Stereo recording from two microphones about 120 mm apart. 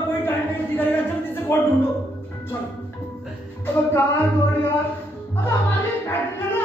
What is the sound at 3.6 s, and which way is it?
Music, 20° left (ahead or behind).